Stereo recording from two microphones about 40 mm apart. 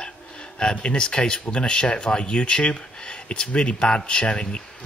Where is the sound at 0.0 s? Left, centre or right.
Left.